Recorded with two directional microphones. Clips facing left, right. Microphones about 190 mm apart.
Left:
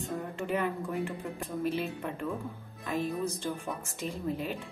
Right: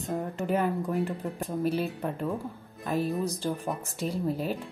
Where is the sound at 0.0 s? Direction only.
40° right (ahead or behind).